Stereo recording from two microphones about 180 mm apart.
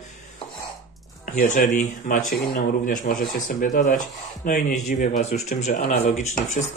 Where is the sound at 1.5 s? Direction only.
50° left (ahead or behind).